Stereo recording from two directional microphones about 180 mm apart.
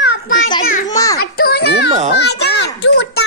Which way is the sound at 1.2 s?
60° left (ahead or behind).